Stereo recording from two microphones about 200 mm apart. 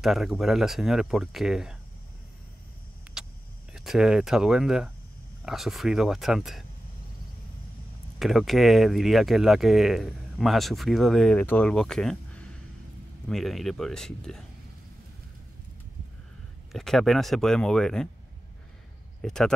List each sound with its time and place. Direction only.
0.0 s speech: centre (ahead or behind)
3.2 s vehicle: 5° right (ahead or behind)
3.7 s speech: centre (ahead or behind)
8.2 s speech: centre (ahead or behind)
16.7 s speech: centre (ahead or behind)
19.2 s speech: 5° left (ahead or behind)